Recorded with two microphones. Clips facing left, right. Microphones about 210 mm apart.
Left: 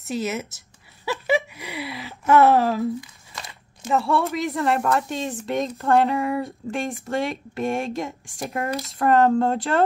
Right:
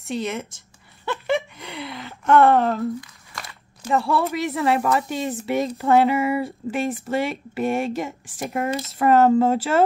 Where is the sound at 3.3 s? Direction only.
20° left (ahead or behind).